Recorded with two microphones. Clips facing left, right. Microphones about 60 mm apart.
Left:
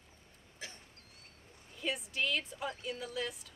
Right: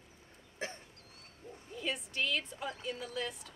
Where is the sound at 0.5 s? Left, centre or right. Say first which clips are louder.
Right 8 dB; right.